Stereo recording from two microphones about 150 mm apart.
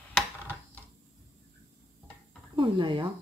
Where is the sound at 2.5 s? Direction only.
35° right (ahead or behind).